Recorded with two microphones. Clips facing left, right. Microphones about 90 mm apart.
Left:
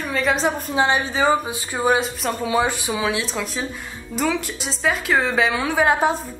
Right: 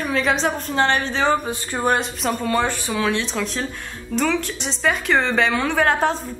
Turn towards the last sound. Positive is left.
turn(degrees=10)  # may be behind; listen again after turning